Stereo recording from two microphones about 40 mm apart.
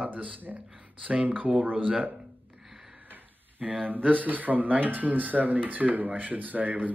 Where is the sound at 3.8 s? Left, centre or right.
Right.